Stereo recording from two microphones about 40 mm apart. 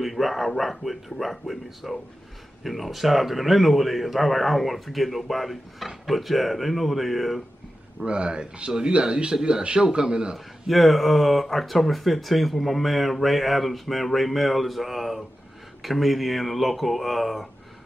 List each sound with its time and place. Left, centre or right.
0.0 s speech: centre
8.0 s speech: right
10.3 s speech: centre